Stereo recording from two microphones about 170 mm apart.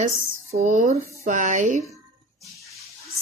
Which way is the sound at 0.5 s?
40° right (ahead or behind).